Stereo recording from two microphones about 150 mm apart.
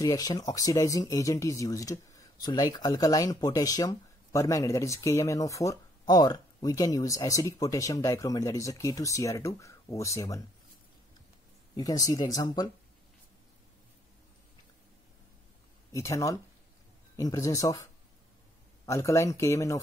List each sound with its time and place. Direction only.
0.0 s speech: 25° left (ahead or behind)
11.7 s speech: 25° left (ahead or behind)
15.9 s speech: 20° left (ahead or behind)
18.9 s speech: 20° left (ahead or behind)